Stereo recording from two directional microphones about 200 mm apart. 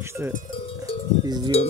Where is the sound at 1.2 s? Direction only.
20° right (ahead or behind).